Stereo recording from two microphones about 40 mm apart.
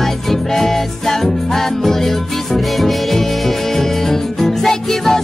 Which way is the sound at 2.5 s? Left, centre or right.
Centre.